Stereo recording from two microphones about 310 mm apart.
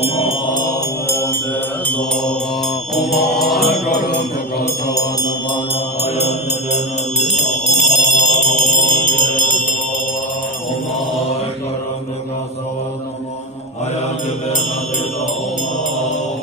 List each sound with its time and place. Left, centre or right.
3.3 s mantra: left
7.3 s music: left